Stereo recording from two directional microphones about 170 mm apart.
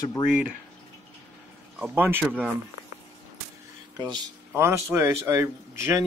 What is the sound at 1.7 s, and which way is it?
Speech, 10° right (ahead or behind).